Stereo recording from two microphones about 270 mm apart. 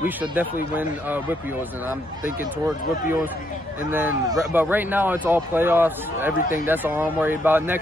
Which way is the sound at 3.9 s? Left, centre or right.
Centre.